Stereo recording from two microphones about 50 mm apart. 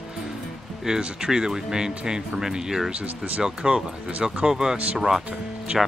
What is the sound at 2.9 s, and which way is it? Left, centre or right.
Speech, right.